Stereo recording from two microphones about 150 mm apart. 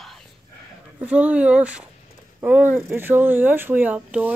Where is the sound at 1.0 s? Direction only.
10° right (ahead or behind).